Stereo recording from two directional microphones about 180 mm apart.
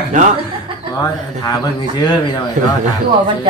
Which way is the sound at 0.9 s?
20° left (ahead or behind).